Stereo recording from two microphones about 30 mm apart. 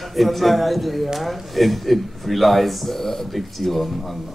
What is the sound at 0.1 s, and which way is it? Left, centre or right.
Speech, centre.